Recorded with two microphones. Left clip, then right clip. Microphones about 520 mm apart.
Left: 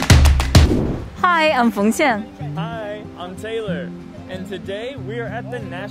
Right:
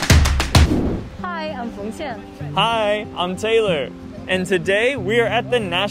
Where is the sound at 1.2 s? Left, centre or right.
Left.